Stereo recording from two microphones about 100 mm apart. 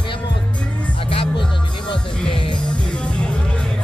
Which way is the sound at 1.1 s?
65° left (ahead or behind).